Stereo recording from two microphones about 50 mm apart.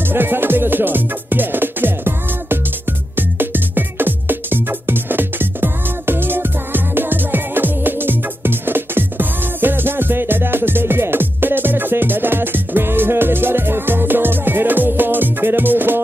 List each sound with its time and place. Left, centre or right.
0.1 s music: right